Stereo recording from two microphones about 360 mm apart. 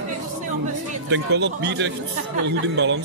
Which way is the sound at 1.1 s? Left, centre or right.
Right.